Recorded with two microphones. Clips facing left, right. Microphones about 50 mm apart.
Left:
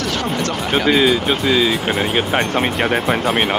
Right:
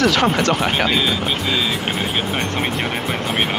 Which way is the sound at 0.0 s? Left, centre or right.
Right.